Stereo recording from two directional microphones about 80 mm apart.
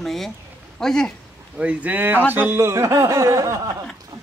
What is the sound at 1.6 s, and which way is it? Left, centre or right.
A man's voice, centre.